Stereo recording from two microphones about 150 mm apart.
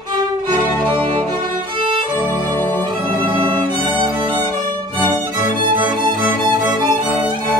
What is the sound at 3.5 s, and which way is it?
Music, 30° right (ahead or behind).